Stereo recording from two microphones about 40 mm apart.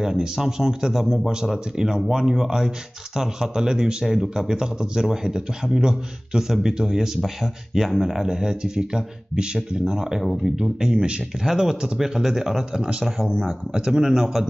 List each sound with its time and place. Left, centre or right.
0.0 s speech: centre